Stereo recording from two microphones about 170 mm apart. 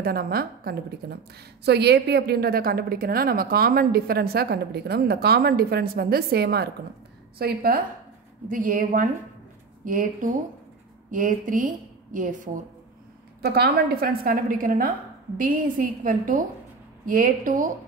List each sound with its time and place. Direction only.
0.0 s a woman's voice: 65° right (ahead or behind)
1.6 s a woman's voice: 75° right (ahead or behind)
8.5 s a woman's voice: 55° right (ahead or behind)
13.4 s a woman's voice: 70° right (ahead or behind); by 17.6 s 50° right (ahead or behind)